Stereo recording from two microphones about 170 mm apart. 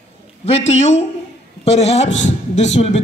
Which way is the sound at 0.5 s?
40° left (ahead or behind).